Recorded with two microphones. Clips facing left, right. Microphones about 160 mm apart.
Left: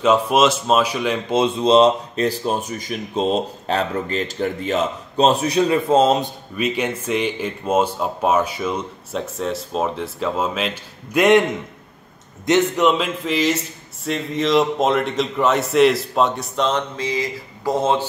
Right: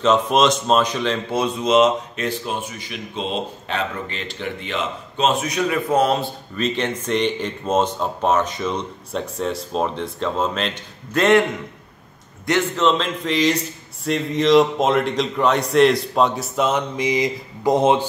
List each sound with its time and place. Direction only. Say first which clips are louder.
0.0 s speech: left 1 dB; 5° left (ahead or behind)
1.3 s speech: left 4 dB; 25° left (ahead or behind)
12.4 s a man's voice: left 2 dB; 15° left (ahead or behind); by 18.0 s 15° right (ahead or behind)